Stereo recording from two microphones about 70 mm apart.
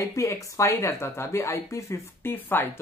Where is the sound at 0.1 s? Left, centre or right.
Left.